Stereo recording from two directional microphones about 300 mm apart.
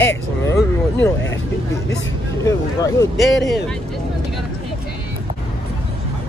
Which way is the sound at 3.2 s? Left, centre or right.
Centre.